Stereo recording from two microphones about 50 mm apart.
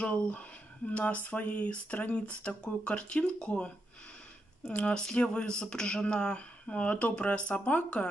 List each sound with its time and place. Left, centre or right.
0.0 s speech: left
4.7 s speech: left